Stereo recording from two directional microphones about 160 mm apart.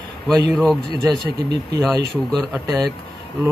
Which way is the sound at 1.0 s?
25° right (ahead or behind).